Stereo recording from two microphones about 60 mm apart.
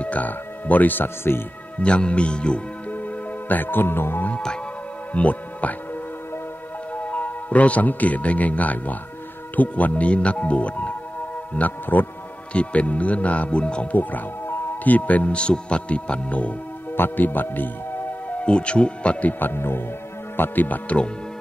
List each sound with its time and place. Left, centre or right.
0.0 s speech: left
1.8 s speech: centre
2.9 s music: left
5.1 s speech: left
6.9 s a man's voice: left
13.9 s speech: left
16.9 s speech: left
18.4 s speech: centre
19.4 s speech: left